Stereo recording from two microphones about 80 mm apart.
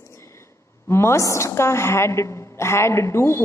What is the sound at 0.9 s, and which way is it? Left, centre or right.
A woman's voice, left.